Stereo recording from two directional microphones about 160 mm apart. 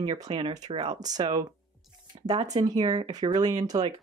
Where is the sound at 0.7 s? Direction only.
35° right (ahead or behind).